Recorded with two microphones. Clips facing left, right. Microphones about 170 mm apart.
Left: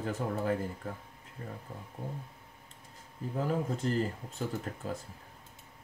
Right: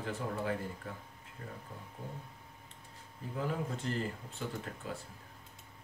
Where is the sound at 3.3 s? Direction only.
40° left (ahead or behind).